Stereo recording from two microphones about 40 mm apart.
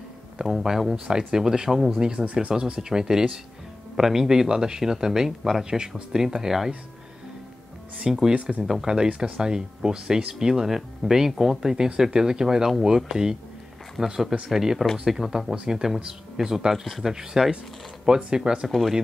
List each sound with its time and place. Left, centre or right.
0.5 s speech: centre
2.0 s speech: right
8.0 s speech: centre
8.8 s speech: centre